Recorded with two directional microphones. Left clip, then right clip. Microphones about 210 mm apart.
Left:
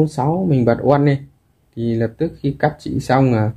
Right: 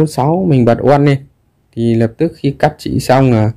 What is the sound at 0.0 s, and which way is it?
Speech, 45° right (ahead or behind).